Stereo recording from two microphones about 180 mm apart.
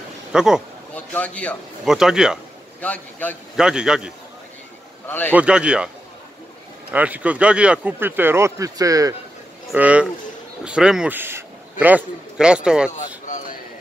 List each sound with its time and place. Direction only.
0.3 s speech: 5° right (ahead or behind)
0.9 s speech: 10° left (ahead or behind)
2.8 s speech: 10° left (ahead or behind)
3.5 s a man's voice: 5° right (ahead or behind)
5.0 s a man's voice: 10° left (ahead or behind)
5.3 s a man's voice: 5° right (ahead or behind)
6.9 s speech: 10° right (ahead or behind)
9.7 s a man's voice: 5° right (ahead or behind)